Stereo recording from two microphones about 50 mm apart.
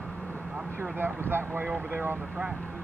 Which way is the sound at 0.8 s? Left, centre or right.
Right.